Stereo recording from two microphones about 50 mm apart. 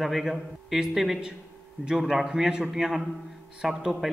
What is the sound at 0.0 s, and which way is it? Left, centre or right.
A man's voice, centre.